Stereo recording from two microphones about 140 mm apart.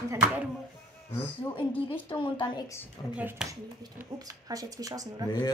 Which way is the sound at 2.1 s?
35° left (ahead or behind).